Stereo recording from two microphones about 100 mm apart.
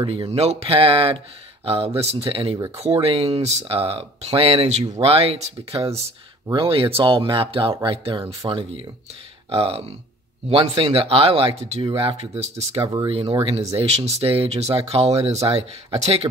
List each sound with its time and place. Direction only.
0.3 s speech: 90° right; by 2.6 s 60° right (ahead or behind)
3.0 s speech: 85° right
6.5 s speech: 65° right (ahead or behind)
7.8 s speech: 75° right (ahead or behind)
8.5 s speech: 60° right (ahead or behind)
9.5 s speech: 80° right
12.8 s speech: 45° right (ahead or behind)
13.4 s speech: 70° right (ahead or behind)
13.7 s speech: 90° right